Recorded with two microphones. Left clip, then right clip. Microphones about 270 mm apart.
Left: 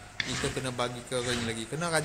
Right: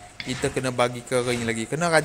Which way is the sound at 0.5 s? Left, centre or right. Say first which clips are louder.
Right 9 dB; right.